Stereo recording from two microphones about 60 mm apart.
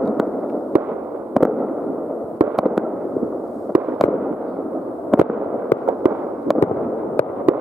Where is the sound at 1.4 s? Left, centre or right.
Centre.